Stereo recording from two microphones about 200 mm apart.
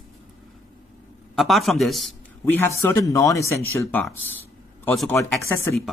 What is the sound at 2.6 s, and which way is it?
A man's voice, 10° left (ahead or behind).